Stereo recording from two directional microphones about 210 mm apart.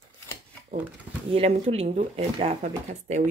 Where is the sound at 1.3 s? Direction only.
30° right (ahead or behind).